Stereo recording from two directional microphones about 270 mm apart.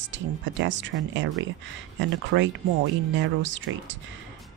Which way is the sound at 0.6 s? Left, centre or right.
Right.